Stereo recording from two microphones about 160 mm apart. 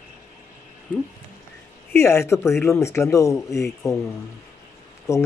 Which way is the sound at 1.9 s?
15° left (ahead or behind).